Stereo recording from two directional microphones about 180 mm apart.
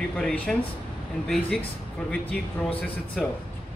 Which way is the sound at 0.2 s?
5° left (ahead or behind).